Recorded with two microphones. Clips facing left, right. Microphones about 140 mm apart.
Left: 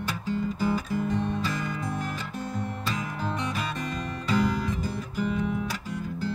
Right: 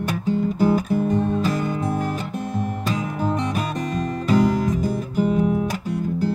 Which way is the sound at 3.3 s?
45° right (ahead or behind).